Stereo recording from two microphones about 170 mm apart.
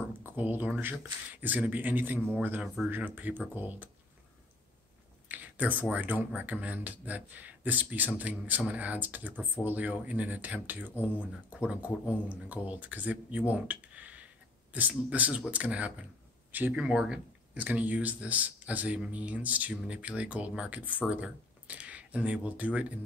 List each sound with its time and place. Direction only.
0.2 s speech: 10° right (ahead or behind)
5.3 s speech: 10° right (ahead or behind)